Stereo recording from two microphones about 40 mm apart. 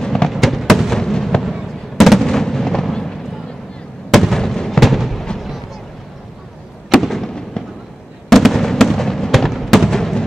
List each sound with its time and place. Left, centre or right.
0.0 s fireworks: centre
0.3 s fireworks: centre
1.4 s fireworks: centre
2.2 s artillery fire: centre
2.8 s fireworks: centre
6.9 s fireworks: centre
7.6 s fireworks: left
8.3 s fireworks: centre